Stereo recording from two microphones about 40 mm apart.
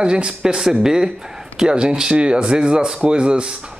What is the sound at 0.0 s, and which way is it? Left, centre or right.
Speech, right.